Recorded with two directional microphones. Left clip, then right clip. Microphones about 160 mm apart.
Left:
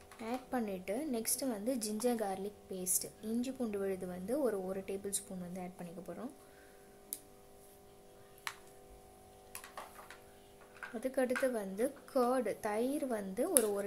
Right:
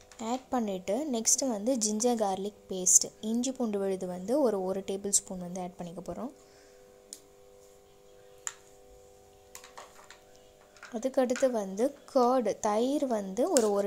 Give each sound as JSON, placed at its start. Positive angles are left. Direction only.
{"t": 0.2, "sound": "a woman's voice", "side_deg": -30}
{"t": 11.0, "sound": "a woman's voice", "side_deg": -30}